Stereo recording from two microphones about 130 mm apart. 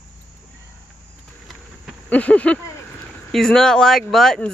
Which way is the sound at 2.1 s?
10° left (ahead or behind).